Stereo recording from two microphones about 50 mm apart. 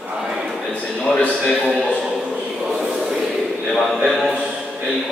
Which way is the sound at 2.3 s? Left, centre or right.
Centre.